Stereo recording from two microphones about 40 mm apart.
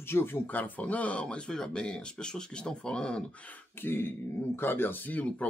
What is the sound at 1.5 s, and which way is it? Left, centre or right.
Speech, centre.